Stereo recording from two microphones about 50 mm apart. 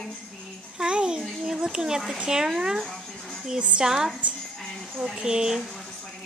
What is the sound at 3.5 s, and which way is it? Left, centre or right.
Speech, right.